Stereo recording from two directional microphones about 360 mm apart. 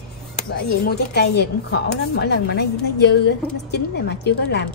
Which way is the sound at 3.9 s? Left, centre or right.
Left.